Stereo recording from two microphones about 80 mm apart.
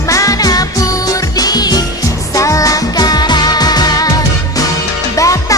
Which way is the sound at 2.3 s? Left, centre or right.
Left.